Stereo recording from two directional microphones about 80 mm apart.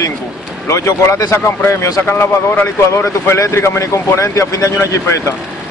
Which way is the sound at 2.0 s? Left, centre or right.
Left.